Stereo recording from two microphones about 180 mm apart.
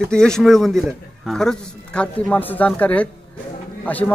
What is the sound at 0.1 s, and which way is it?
A man's voice, 5° left (ahead or behind).